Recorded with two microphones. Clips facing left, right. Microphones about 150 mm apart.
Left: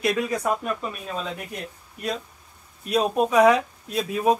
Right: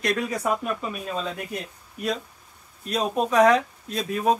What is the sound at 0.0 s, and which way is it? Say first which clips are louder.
Speech: left 2 dB; centre (ahead or behind).